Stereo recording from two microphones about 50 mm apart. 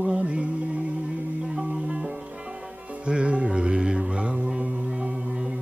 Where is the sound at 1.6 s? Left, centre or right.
Right.